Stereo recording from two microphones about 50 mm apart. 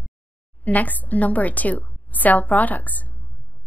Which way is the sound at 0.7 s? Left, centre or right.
Left.